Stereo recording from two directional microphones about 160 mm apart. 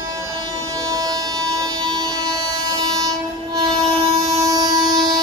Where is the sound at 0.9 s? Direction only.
25° right (ahead or behind).